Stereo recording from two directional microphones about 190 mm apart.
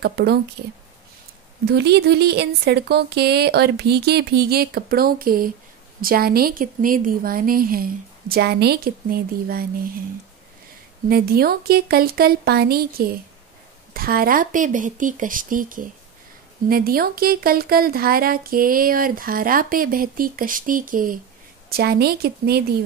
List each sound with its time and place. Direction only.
0.0 s speech: 60° right (ahead or behind)
1.7 s speech: 60° right (ahead or behind)
11.1 s speech: 55° right (ahead or behind)